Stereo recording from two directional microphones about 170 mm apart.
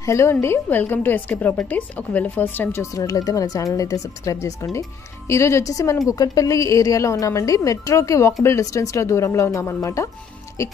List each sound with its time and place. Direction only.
0.0 s a woman's voice: 15° left (ahead or behind)